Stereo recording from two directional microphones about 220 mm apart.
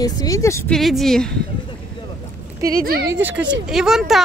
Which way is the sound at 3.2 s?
5° right (ahead or behind).